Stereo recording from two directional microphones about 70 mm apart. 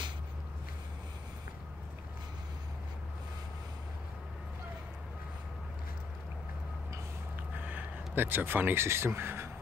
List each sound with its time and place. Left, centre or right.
7.6 s speech: right